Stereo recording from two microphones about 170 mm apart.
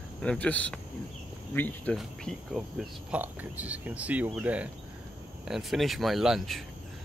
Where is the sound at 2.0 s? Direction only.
Centre (ahead or behind).